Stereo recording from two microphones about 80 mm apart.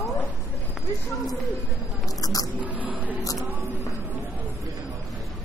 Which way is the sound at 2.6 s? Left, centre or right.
Centre.